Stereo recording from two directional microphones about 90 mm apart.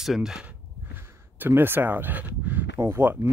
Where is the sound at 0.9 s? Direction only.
20° right (ahead or behind).